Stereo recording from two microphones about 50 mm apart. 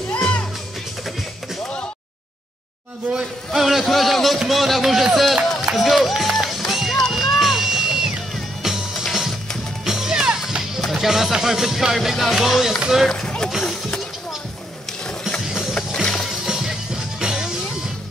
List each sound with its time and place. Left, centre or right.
3.1 s speech: centre
6.7 s music: centre
9.8 s music: centre
10.9 s speech: centre
13.1 s run: centre
13.7 s a sound: centre
15.4 s music: centre
15.9 s music: centre
16.3 s music: centre